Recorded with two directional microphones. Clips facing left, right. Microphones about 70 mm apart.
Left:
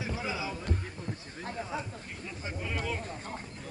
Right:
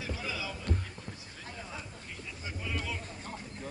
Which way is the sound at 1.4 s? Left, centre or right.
Left.